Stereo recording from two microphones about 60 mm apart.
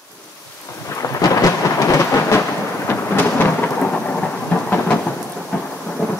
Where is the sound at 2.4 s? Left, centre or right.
Left.